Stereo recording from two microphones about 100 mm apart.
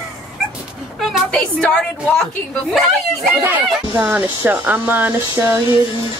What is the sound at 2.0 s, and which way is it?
Speech, 5° left (ahead or behind).